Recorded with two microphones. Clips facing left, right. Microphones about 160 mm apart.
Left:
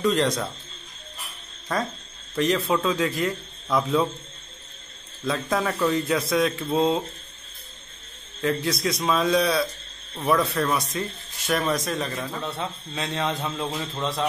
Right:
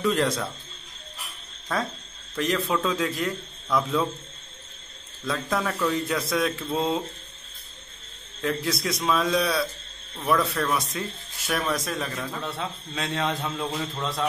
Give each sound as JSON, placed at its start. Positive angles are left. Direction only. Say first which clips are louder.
{"t": 0.0, "sound": "a man's voice", "louder": "left 2 dB", "side_deg": -5}
{"t": 2.3, "sound": "a man's voice", "louder": "left 3 dB", "side_deg": 0}
{"t": 5.2, "sound": "a man's voice", "louder": "left 2 dB", "side_deg": 5}
{"t": 8.4, "sound": "a man's voice", "louder": "left 2 dB", "side_deg": 0}